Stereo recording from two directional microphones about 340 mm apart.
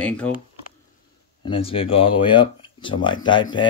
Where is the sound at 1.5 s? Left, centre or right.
Centre.